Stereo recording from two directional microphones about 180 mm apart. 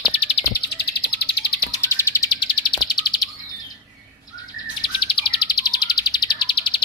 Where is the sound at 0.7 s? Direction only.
65° left (ahead or behind).